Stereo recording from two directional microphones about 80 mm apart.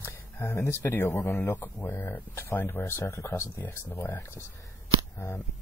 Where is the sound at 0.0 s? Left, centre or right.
Left.